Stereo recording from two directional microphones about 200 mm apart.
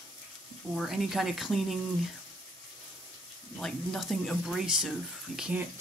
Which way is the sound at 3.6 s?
Centre (ahead or behind).